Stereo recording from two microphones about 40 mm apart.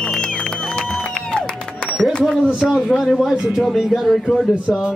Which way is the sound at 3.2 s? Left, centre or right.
Centre.